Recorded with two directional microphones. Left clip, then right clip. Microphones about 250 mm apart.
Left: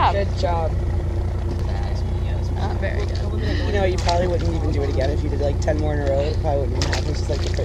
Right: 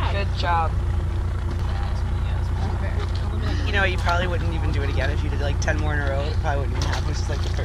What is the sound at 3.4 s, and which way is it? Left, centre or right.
Speech, centre.